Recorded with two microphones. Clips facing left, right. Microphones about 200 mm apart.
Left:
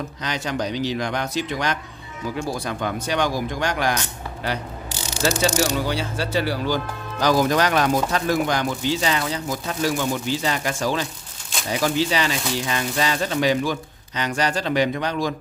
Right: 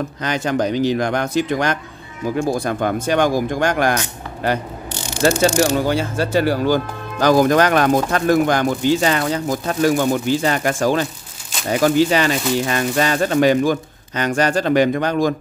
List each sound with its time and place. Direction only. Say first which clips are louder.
0.2 s speech: right 7 dB; 50° right (ahead or behind)